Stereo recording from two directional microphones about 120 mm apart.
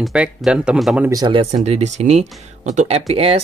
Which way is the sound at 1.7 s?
70° right (ahead or behind).